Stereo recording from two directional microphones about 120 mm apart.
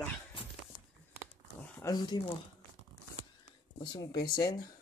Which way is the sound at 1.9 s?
35° left (ahead or behind).